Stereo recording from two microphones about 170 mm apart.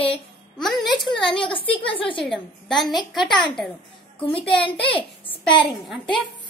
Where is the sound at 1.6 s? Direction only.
30° left (ahead or behind).